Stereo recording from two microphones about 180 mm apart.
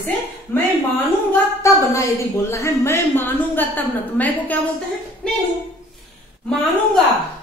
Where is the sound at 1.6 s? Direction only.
15° left (ahead or behind).